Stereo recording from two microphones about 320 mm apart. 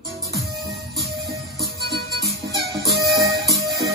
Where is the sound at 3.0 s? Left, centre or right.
Right.